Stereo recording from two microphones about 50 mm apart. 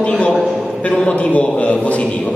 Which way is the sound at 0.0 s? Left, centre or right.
Left.